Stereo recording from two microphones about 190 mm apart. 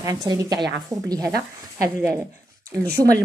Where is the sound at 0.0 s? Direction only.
20° right (ahead or behind).